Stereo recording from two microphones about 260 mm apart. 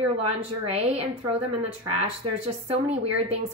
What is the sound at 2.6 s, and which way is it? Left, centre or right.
Speech, right.